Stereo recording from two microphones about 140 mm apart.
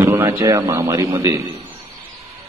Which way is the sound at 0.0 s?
20° right (ahead or behind).